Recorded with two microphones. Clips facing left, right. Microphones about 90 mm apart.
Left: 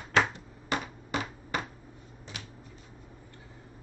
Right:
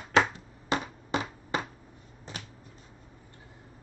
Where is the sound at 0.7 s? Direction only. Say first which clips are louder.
Right 2 dB; 25° right (ahead or behind).